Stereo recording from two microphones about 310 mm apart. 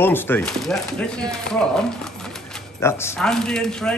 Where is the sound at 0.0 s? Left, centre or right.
Centre.